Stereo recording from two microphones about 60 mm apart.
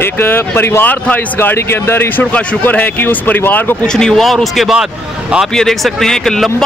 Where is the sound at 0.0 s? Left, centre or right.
Left.